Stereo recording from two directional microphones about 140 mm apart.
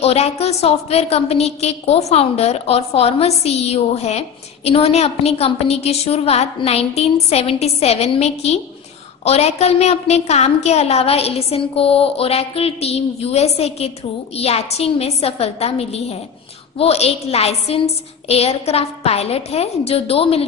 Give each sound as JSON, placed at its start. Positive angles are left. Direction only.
{"t": 0.0, "sound": "a woman's voice", "side_deg": 50}